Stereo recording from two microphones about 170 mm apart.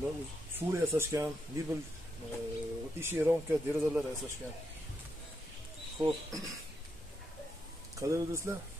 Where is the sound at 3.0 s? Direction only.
15° right (ahead or behind).